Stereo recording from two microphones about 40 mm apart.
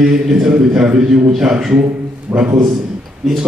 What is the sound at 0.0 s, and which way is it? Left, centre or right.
A man's voice, centre.